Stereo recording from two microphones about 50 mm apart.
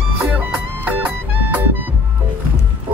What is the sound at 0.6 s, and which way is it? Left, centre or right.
Music, right.